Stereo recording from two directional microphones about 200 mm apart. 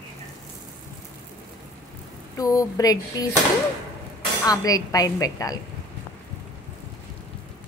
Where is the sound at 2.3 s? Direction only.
15° left (ahead or behind).